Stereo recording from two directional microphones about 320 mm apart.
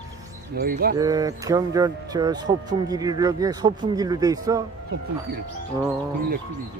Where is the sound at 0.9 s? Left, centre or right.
Centre.